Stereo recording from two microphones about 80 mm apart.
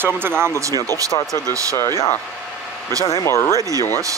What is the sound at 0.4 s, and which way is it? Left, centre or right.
Speech, right.